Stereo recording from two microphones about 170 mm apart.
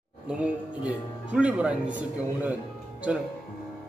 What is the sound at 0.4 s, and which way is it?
A man's voice, 5° right (ahead or behind).